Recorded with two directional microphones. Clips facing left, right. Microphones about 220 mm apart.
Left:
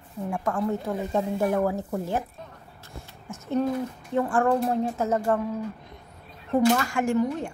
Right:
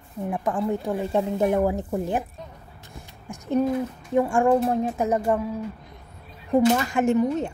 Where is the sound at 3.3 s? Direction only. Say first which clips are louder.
Right 3 dB; 15° right (ahead or behind).